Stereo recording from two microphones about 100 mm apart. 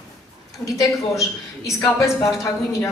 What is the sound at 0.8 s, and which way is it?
A woman's voice, 30° left (ahead or behind).